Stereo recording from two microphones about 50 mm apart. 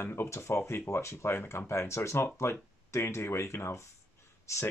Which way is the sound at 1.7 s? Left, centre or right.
Left.